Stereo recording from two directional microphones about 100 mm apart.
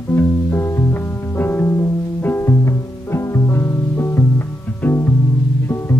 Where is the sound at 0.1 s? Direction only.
25° left (ahead or behind).